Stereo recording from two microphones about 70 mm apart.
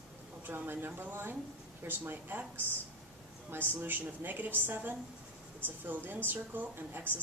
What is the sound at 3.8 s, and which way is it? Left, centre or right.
A woman's voice, right.